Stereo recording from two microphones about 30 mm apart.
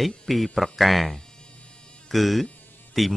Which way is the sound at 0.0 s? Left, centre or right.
Centre.